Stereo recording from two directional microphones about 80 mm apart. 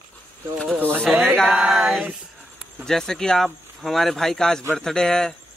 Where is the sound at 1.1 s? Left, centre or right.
Centre.